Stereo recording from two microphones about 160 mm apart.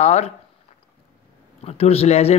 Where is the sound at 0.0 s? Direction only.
45° left (ahead or behind).